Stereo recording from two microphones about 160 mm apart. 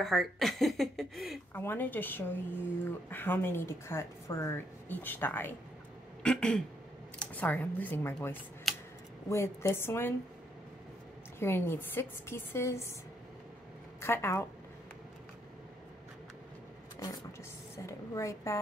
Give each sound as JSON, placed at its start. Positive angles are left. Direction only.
{"t": 0.0, "sound": "speech", "side_deg": 0}
{"t": 1.5, "sound": "speech", "side_deg": 15}
{"t": 11.3, "sound": "speech", "side_deg": 15}
{"t": 14.0, "sound": "speech", "side_deg": 15}
{"t": 17.8, "sound": "speech", "side_deg": 20}